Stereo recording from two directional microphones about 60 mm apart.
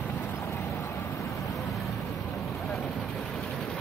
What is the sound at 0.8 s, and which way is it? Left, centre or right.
Vehicle, left.